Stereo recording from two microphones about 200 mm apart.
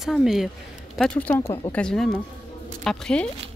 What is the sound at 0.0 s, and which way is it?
Speech, centre (ahead or behind).